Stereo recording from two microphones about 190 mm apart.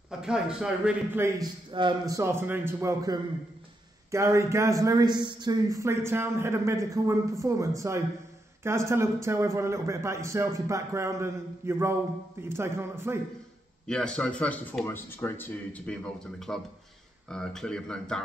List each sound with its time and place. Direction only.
0.2 s a man's voice: 5° right (ahead or behind)
1.7 s a man's voice: 25° right (ahead or behind)
13.8 s a man's voice: 5° left (ahead or behind)